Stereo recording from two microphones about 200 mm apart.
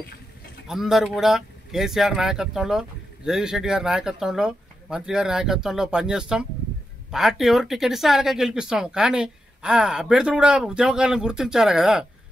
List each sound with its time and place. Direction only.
0.7 s speech: centre (ahead or behind)